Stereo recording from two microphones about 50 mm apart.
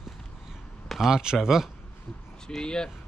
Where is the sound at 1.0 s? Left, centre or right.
Centre.